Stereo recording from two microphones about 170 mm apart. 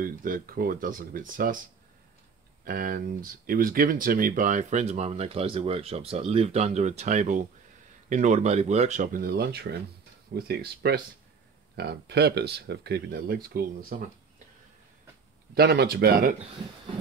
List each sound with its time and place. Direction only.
0.0 s speech: 55° right (ahead or behind)
2.6 s speech: 55° right (ahead or behind)
15.5 s speech: 70° right (ahead or behind)